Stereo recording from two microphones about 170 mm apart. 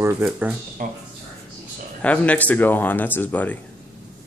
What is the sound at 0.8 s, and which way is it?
Speech, 50° right (ahead or behind).